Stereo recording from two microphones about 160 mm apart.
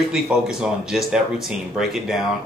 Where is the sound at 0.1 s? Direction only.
5° right (ahead or behind).